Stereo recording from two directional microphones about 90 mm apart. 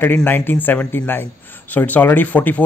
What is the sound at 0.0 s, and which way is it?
A man's voice, 20° left (ahead or behind).